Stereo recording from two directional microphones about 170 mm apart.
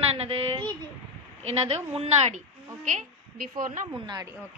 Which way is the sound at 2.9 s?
55° right (ahead or behind).